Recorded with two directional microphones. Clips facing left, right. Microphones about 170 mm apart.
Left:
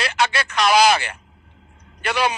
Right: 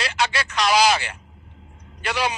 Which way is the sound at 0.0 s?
55° left (ahead or behind).